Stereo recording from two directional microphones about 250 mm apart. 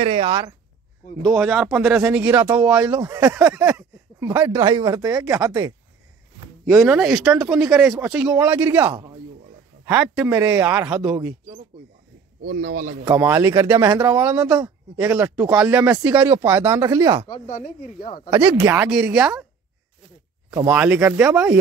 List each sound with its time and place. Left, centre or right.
0.0 s speech: right
1.2 s speech: centre
2.9 s speech: centre
6.6 s speech: centre
12.4 s speech: right
13.0 s speech: centre
17.5 s speech: left
18.3 s speech: centre
20.5 s speech: centre